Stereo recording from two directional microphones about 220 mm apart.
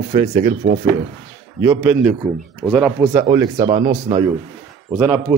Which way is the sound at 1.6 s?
10° right (ahead or behind).